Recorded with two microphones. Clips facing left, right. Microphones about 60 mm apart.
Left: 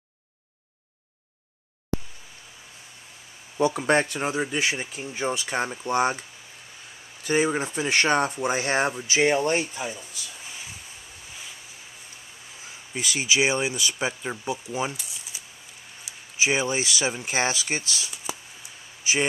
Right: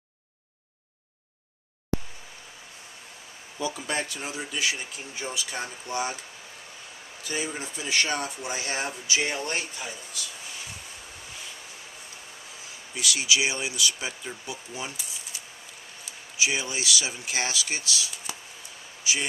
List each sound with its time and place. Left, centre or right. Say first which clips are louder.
3.5 s speech: left 9 dB; left
7.2 s speech: left 9 dB; left
12.9 s speech: left 1 dB; left
16.3 s speech: left 5 dB; left